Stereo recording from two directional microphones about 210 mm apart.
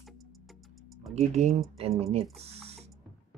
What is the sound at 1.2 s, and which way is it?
Speech, 30° right (ahead or behind).